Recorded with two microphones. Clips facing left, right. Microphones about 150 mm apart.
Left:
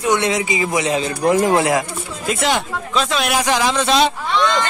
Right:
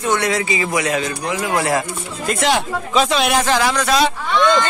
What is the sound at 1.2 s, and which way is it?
Speech, 50° left (ahead or behind).